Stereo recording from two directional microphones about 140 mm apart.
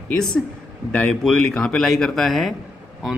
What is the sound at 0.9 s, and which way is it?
Speech, 5° left (ahead or behind).